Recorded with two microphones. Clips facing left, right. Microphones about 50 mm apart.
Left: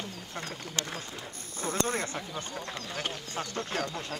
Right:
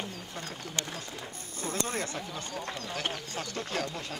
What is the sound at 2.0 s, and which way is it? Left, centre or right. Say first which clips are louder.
Speech: left 1 dB; left.